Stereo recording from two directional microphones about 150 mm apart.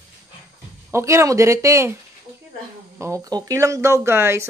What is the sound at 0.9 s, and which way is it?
A woman's voice, 20° right (ahead or behind).